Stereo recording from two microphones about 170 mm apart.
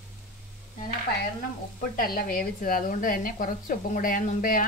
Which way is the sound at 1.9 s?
60° left (ahead or behind).